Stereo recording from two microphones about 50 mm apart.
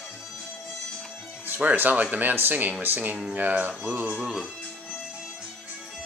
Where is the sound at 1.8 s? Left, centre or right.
Right.